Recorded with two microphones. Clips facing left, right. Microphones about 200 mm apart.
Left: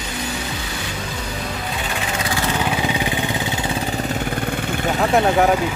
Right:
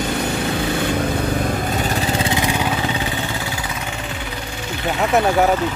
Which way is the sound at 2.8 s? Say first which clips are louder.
Left 1 dB; 15° left (ahead or behind).